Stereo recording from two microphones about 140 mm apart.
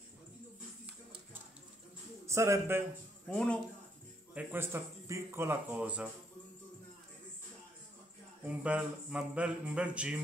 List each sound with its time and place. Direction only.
2.2 s a man's voice: 20° right (ahead or behind)
3.3 s speech: 5° left (ahead or behind)
4.3 s speech: 10° right (ahead or behind)
8.5 s speech: 10° right (ahead or behind)